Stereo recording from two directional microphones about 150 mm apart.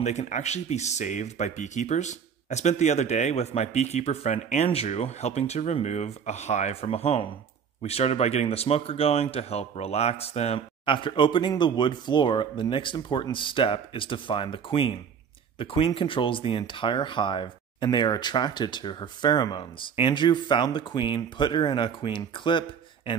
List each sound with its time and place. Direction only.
0.0 s speech: 50° left (ahead or behind); by 23.1 s 35° left (ahead or behind)